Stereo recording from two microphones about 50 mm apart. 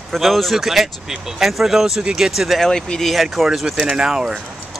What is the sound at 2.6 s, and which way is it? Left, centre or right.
Speech, centre.